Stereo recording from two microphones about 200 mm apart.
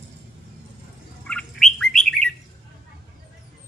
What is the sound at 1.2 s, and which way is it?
Bird, 5° left (ahead or behind).